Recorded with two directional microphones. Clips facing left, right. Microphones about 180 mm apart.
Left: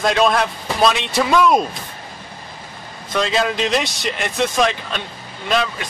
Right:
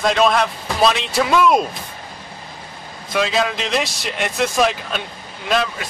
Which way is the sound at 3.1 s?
5° right (ahead or behind).